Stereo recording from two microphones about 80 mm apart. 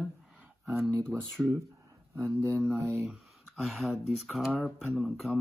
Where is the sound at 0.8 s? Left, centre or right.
Centre.